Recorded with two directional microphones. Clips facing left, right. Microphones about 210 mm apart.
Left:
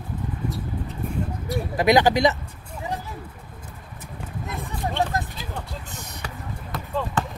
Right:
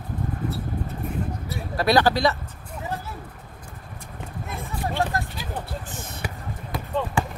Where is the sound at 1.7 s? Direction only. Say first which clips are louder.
Left 2 dB; 15° left (ahead or behind).